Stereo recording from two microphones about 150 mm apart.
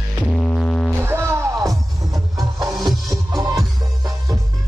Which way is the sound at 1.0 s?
15° right (ahead or behind).